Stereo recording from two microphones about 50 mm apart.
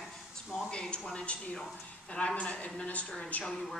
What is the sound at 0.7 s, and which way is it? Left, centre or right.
A woman's voice, centre.